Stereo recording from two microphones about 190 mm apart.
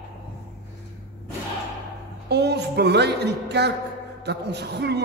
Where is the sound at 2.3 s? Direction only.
60° right (ahead or behind).